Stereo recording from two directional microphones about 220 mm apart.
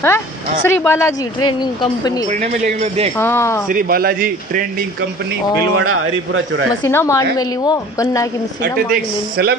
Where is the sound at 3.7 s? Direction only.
40° right (ahead or behind).